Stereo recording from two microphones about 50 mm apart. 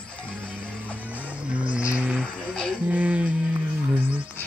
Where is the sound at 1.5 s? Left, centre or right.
Right.